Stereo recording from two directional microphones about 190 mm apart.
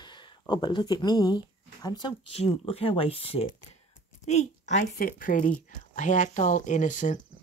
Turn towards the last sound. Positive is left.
turn(degrees=40)  # may be behind; listen again after turning